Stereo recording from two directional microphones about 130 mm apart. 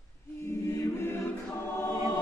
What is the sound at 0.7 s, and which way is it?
Choir, 20° left (ahead or behind).